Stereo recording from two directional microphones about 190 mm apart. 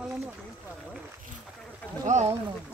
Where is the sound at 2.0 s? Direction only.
40° right (ahead or behind).